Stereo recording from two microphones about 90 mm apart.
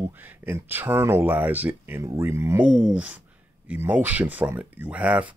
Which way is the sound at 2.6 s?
15° right (ahead or behind).